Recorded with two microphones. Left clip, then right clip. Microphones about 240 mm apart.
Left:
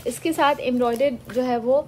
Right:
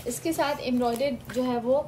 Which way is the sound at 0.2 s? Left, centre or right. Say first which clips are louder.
Left 7 dB; centre.